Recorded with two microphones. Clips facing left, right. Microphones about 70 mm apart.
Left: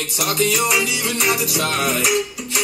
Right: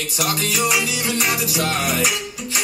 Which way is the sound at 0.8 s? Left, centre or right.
Right.